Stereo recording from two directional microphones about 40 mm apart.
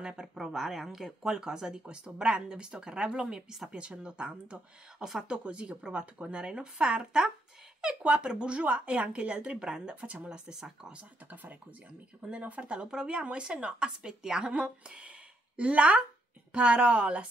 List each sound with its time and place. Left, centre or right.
0.0 s speech: centre
4.0 s speech: right
4.9 s speech: centre
5.5 s speech: right
12.4 s a woman's voice: right